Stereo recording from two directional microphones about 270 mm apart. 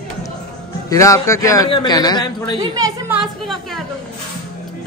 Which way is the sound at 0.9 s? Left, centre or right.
Centre.